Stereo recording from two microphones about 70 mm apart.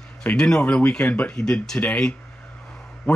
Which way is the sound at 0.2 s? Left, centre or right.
Centre.